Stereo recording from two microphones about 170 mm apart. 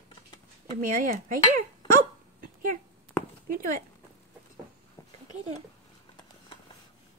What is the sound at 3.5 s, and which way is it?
Dog, 50° right (ahead or behind).